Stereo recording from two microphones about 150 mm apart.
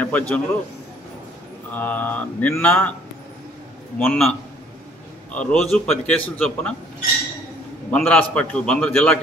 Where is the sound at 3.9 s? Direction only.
10° left (ahead or behind).